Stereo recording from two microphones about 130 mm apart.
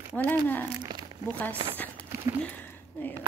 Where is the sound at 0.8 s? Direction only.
35° right (ahead or behind).